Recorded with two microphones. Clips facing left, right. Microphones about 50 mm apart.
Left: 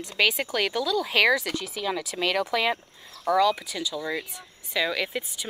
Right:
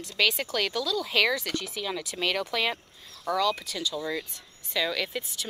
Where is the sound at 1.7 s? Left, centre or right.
Centre.